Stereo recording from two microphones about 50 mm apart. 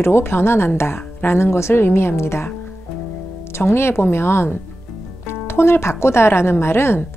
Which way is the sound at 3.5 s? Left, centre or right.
Left.